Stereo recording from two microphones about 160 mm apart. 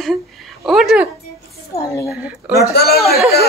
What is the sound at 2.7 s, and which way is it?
Speech, 80° left.